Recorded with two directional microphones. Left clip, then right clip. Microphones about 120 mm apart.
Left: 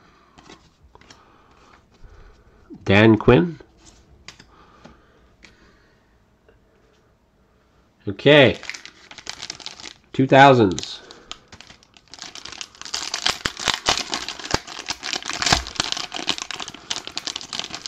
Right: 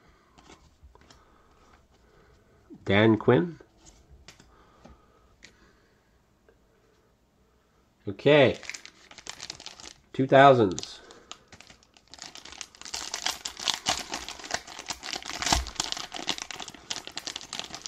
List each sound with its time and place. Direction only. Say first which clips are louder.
0.4 s a sound: left 7 dB; centre (ahead or behind)
2.8 s speech: left 7 dB; 20° left (ahead or behind)
5.4 s a sound: left 4 dB; 35° right (ahead or behind)
8.0 s speech: left 7 dB; 15° left (ahead or behind)
8.5 s crumpling: left 6 dB; 25° right (ahead or behind)
9.0 s crumpling: left 8 dB; 10° right (ahead or behind)
10.1 s speech: left 5 dB; 30° left (ahead or behind)
11.9 s crumpling: left 7 dB; centre (ahead or behind)